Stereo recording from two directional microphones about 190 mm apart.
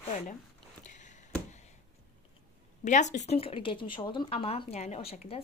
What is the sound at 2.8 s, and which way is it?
Speech, 40° left (ahead or behind).